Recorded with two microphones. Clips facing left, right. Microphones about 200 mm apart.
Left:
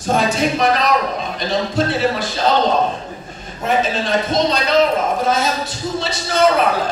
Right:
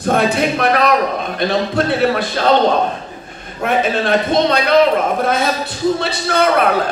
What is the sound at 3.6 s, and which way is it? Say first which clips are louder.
A man's voice: right 2 dB; 60° right (ahead or behind).